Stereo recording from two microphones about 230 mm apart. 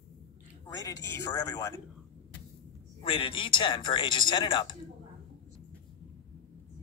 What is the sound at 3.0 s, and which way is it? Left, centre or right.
Speech, left.